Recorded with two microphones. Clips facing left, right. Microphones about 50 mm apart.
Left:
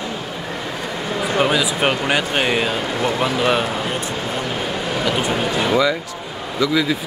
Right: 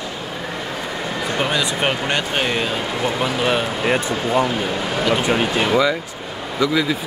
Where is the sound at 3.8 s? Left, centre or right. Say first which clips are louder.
Right 4 dB; right.